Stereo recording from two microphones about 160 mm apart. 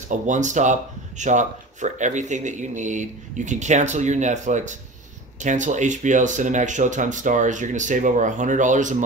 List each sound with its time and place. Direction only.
0.3 s speech: 50° right (ahead or behind)